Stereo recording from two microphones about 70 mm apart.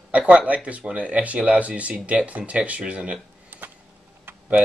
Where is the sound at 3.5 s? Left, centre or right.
Right.